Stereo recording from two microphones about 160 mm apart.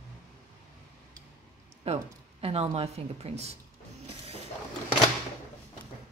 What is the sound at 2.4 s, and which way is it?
Speech, 40° right (ahead or behind).